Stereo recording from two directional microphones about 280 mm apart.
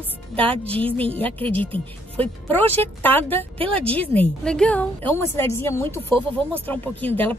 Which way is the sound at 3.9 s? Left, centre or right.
Centre.